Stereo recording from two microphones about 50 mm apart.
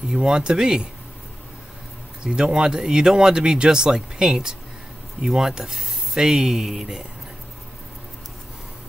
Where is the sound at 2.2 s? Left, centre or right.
Centre.